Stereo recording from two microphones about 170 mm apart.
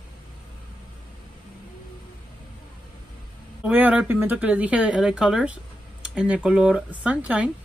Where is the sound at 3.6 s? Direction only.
10° right (ahead or behind).